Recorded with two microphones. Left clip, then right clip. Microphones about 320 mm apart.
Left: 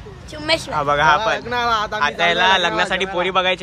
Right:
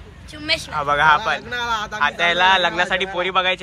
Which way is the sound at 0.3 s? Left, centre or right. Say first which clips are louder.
Left 3 dB; left.